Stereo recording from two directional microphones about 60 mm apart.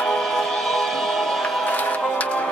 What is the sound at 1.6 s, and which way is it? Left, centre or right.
Music, left.